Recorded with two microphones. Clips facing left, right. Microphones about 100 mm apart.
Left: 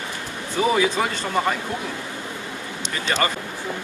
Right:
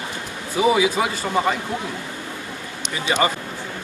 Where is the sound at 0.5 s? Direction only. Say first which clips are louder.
Right 2 dB; 10° right (ahead or behind).